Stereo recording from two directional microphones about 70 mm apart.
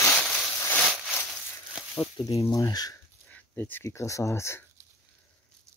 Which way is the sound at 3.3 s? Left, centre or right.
Left.